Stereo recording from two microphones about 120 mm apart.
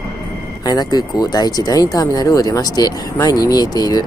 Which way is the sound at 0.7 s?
35° left (ahead or behind).